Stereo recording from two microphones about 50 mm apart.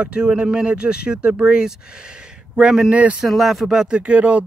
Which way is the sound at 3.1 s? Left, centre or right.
Centre.